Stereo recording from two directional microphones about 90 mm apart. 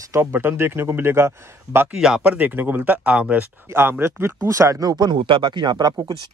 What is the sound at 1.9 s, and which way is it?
Speech, 10° right (ahead or behind).